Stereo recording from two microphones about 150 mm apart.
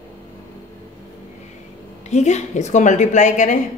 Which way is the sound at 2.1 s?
50° left (ahead or behind).